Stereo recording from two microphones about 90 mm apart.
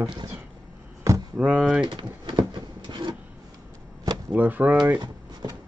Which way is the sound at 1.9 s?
55° right (ahead or behind).